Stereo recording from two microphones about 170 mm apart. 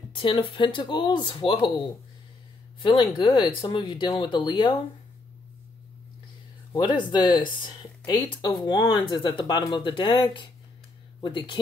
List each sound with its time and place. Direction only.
0.1 s speech: 30° left (ahead or behind)
2.8 s speech: 25° left (ahead or behind)
6.7 s speech: 25° left (ahead or behind)